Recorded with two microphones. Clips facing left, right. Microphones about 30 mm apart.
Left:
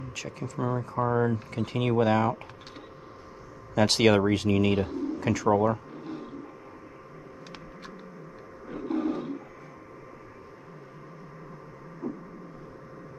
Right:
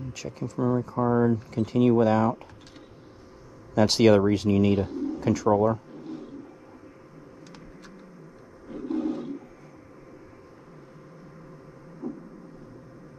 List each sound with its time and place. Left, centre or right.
0.1 s speech: centre
0.6 s speech: centre
3.7 s speech: centre
5.5 s pigeon: centre
8.6 s roar: left
12.0 s a sound: centre